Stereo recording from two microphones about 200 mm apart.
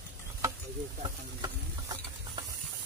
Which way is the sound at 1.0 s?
20° right (ahead or behind).